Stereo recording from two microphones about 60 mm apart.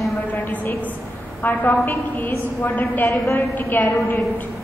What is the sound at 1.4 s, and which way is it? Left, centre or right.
A woman's voice, left.